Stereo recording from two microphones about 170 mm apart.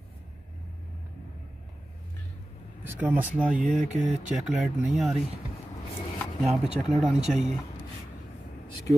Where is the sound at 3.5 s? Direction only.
50° right (ahead or behind).